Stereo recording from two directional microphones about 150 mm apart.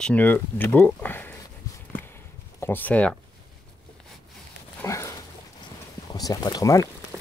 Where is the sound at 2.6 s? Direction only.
15° left (ahead or behind).